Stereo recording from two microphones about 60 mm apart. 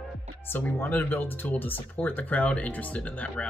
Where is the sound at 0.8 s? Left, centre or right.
Left.